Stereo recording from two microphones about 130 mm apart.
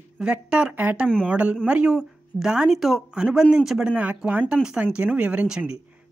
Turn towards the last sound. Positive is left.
turn(degrees=-5)  # may be behind; listen again after turning